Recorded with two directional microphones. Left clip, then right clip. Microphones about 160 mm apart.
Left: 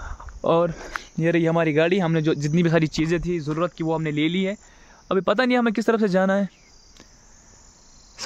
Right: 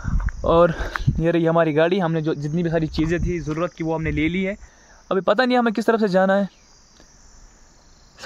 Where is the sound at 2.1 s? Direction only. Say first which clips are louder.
Left 2 dB; 35° left (ahead or behind).